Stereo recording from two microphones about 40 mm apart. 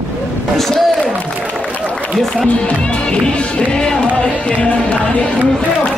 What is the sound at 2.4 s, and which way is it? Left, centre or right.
Speech, left.